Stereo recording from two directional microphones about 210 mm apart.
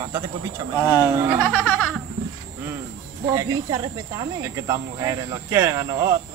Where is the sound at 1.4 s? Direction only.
5° left (ahead or behind).